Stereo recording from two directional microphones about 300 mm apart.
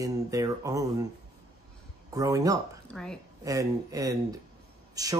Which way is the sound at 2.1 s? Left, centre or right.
Centre.